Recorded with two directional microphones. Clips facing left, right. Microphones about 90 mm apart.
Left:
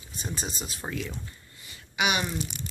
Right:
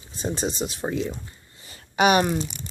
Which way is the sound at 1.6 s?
40° right (ahead or behind).